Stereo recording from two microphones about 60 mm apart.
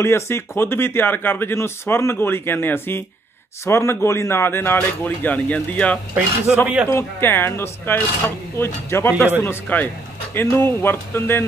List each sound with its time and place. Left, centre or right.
0.0 s speech: left
3.6 s a man's voice: left
4.7 s speech: left
6.5 s speech: centre
6.9 s speech: left